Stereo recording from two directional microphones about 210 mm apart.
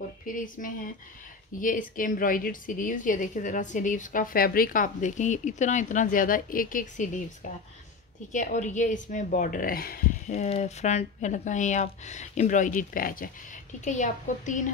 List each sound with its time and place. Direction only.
0.3 s a woman's voice: 40° left (ahead or behind)
10.3 s a woman's voice: 30° left (ahead or behind)